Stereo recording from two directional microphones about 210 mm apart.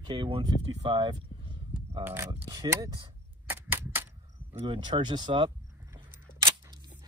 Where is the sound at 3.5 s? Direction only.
10° right (ahead or behind).